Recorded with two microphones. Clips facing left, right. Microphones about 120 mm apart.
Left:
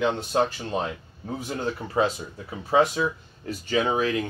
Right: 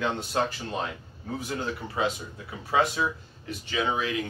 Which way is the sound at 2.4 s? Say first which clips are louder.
Left 4 dB; 25° left (ahead or behind).